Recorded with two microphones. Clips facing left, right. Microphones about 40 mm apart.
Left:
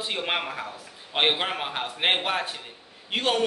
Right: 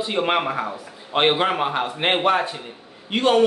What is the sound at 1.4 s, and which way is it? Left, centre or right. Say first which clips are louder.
Speech: right 8 dB; centre.